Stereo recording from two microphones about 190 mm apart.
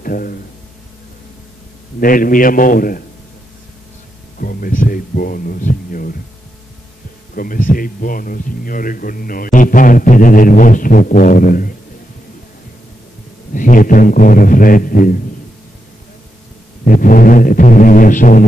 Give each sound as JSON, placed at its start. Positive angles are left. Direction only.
{"t": 0.0, "sound": "a man's voice", "side_deg": 50}
{"t": 2.0, "sound": "speech", "side_deg": 45}
{"t": 4.4, "sound": "speech", "side_deg": 50}
{"t": 7.3, "sound": "speech", "side_deg": 45}
{"t": 13.5, "sound": "speech", "side_deg": 45}
{"t": 16.8, "sound": "speech", "side_deg": 45}